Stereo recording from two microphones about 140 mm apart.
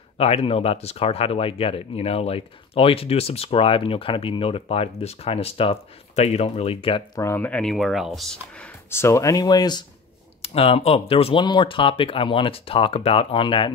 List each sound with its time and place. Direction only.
0.2 s speech: 45° left (ahead or behind)
7.2 s speech: 15° left (ahead or behind)
8.9 s speech: 20° left (ahead or behind)
10.4 s speech: 40° left (ahead or behind)